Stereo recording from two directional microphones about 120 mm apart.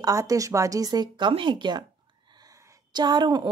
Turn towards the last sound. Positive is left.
turn(degrees=-35)  # may be behind; listen again after turning